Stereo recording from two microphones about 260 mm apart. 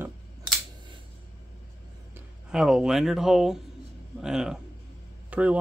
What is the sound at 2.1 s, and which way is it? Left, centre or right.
Speech, centre.